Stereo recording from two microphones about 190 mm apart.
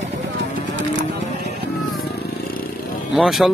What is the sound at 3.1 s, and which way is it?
Speech, centre (ahead or behind).